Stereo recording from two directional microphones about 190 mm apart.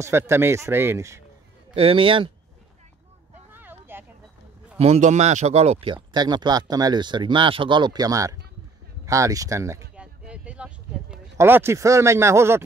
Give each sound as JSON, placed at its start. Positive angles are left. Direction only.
{"t": 0.0, "sound": "speech", "side_deg": -15}
{"t": 1.8, "sound": "speech", "side_deg": -30}
{"t": 3.5, "sound": "vehicle", "side_deg": -10}
{"t": 4.7, "sound": "speech", "side_deg": -35}
{"t": 9.9, "sound": "a sound", "side_deg": -5}